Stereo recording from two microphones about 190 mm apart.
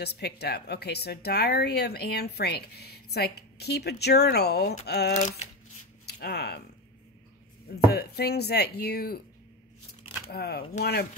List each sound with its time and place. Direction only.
0.0 s speech: 60° left (ahead or behind)
7.6 s speech: 55° left (ahead or behind)
10.3 s speech: 55° left (ahead or behind)